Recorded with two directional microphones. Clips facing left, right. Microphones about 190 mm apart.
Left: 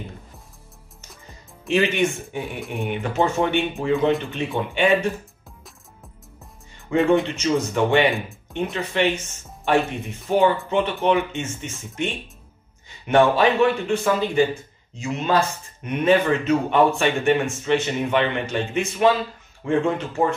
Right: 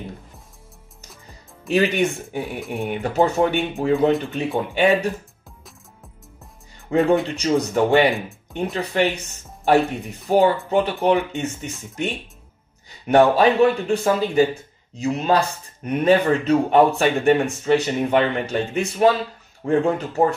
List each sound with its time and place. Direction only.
1.7 s speech: 35° right (ahead or behind)
6.9 s speech: 35° right (ahead or behind)